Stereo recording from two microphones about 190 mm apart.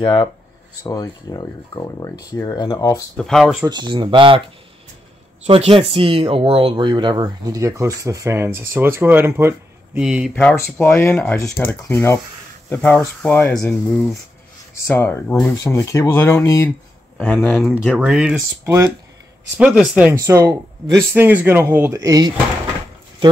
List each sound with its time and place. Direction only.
0.0 s speech: 25° left (ahead or behind)
1.3 s speech: 20° left (ahead or behind)
3.2 s speech: centre (ahead or behind)
3.6 s speech: 25° right (ahead or behind)
5.5 s speech: 30° right (ahead or behind); by 10.0 s 10° right (ahead or behind)
10.0 s speech: centre (ahead or behind); by 16.7 s 15° left (ahead or behind)
17.2 s speech: 5° left (ahead or behind)
19.5 s speech: 5° right (ahead or behind)
20.2 s speech: 15° right (ahead or behind)